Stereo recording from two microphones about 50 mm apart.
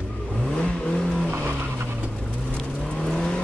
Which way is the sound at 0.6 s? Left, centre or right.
Centre.